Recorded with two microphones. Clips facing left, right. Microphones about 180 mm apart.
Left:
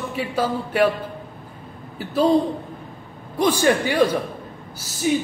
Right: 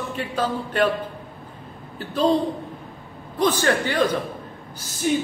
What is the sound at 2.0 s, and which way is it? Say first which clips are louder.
Speech: left 2 dB; 10° left (ahead or behind).